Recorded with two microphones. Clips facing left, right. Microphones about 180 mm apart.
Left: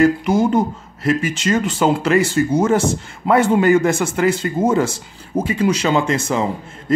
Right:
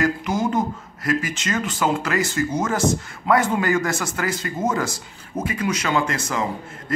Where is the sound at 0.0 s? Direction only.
30° left (ahead or behind).